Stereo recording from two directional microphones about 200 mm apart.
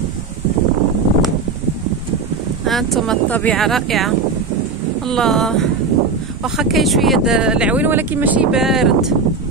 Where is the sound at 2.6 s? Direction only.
Centre (ahead or behind).